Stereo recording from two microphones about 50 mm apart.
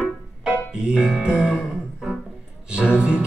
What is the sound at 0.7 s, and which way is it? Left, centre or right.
Speech, centre.